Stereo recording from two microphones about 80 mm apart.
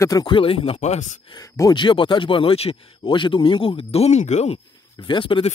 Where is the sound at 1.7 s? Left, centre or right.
Left.